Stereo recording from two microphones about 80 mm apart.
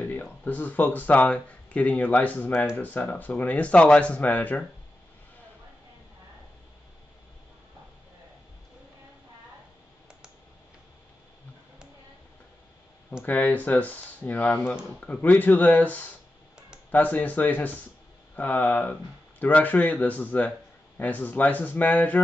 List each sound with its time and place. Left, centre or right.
0.0 s speech: left
13.2 s speech: left